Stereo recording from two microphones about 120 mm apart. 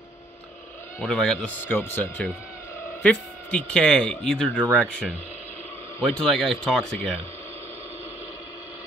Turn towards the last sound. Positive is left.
turn(degrees=5)  # may be behind; listen again after turning